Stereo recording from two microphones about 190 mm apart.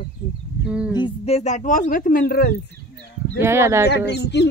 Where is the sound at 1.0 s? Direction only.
35° left (ahead or behind); by 2.6 s 50° left (ahead or behind).